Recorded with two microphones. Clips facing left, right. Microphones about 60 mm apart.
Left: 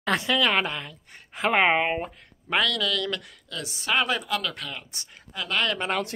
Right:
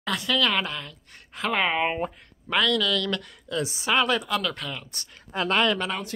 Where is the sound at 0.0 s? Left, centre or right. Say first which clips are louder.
Left 4 dB; left.